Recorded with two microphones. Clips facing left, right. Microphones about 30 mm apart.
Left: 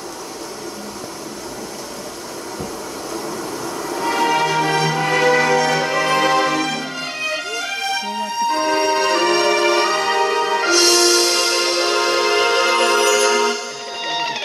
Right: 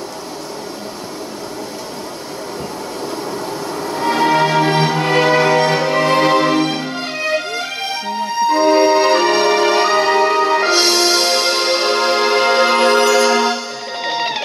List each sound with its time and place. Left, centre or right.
3.6 s music: right